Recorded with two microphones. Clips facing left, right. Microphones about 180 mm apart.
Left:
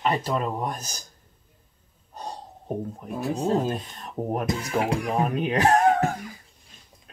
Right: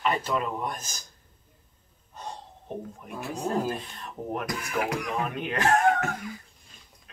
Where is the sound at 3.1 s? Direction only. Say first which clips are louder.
Left 8 dB; 35° left (ahead or behind).